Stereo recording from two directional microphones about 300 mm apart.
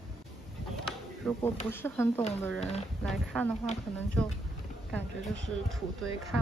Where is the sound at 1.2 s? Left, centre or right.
Centre.